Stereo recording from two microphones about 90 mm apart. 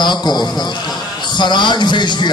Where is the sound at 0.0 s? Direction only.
55° left (ahead or behind).